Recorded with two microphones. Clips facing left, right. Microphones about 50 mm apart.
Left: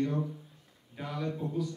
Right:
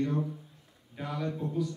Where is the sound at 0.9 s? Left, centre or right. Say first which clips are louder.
Right 1 dB; centre.